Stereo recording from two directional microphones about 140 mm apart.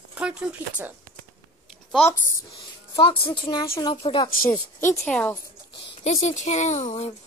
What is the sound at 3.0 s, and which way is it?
A woman's voice, 40° left (ahead or behind).